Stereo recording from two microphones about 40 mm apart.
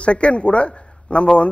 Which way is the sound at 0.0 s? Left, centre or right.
Left.